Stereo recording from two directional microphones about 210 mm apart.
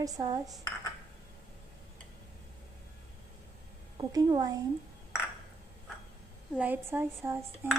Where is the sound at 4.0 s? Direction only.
20° right (ahead or behind).